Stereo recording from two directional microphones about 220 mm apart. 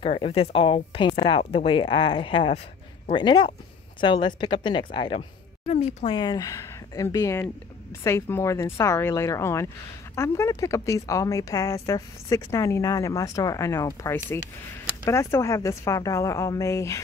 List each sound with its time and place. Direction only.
0.0 s speech: 25° left (ahead or behind)
6.1 s speech: 20° left (ahead or behind)